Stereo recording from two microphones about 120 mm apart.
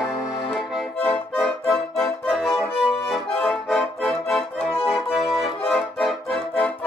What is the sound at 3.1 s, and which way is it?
Accordion, 5° left (ahead or behind).